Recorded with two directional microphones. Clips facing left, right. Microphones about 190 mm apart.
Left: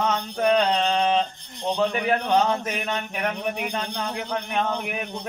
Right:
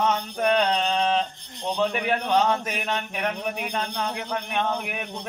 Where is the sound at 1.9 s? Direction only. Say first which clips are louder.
Left 2 dB; centre (ahead or behind).